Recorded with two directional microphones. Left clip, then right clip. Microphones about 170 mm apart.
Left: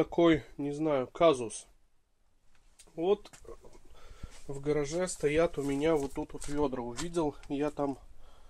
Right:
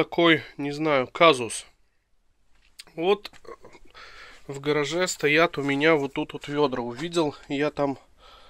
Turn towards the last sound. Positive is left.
turn(degrees=-10)  # may be behind; listen again after turning